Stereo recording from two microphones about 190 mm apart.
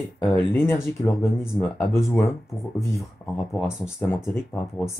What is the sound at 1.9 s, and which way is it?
Speech, 15° left (ahead or behind).